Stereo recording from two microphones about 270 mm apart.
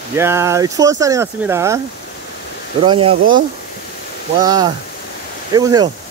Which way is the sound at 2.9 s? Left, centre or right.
Centre.